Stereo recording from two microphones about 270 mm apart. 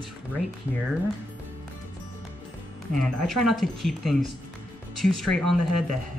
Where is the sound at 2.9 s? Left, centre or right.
Centre.